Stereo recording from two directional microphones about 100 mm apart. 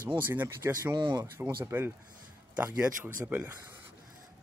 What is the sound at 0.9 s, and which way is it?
Speech, 45° right (ahead or behind).